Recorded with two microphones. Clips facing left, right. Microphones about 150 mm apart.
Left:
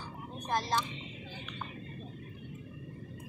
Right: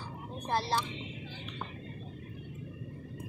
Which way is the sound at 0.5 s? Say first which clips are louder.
Right 1 dB; 35° right (ahead or behind).